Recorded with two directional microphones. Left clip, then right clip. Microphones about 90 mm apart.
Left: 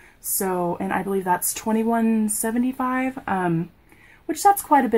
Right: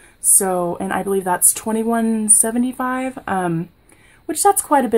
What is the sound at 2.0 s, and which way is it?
Speech, 35° right (ahead or behind).